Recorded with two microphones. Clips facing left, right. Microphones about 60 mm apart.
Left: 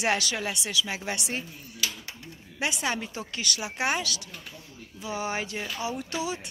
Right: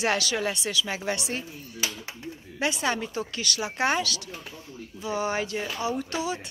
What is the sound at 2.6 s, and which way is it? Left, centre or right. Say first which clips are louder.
Speech: right 2 dB; centre.